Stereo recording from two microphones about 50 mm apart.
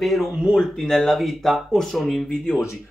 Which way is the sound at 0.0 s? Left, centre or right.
Centre.